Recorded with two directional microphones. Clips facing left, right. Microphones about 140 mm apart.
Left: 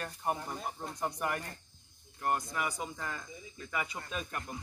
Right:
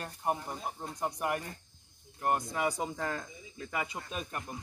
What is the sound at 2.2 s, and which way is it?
Speech, 25° right (ahead or behind).